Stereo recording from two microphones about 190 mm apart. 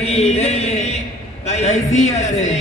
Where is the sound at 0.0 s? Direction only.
35° left (ahead or behind).